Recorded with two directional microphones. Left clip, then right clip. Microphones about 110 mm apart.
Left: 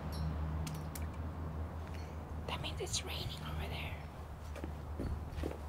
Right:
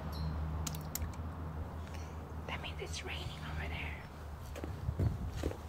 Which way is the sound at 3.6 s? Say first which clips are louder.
Right 2 dB; 50° left (ahead or behind).